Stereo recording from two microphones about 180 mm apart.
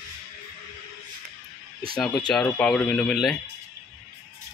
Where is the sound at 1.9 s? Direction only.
Centre (ahead or behind).